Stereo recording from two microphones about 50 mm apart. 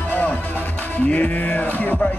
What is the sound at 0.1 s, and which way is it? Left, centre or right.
Music, left.